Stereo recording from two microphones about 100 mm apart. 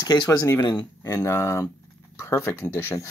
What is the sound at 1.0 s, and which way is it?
Speech, 30° left (ahead or behind).